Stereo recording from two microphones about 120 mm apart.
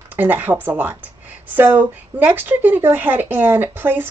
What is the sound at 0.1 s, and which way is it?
Speech, 15° right (ahead or behind).